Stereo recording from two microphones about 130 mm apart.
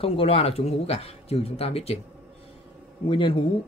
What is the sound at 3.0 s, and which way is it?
Speech, 45° left (ahead or behind).